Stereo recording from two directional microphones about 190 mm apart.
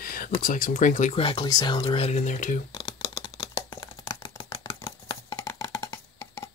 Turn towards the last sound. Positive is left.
turn(degrees=15)  # may be behind; listen again after turning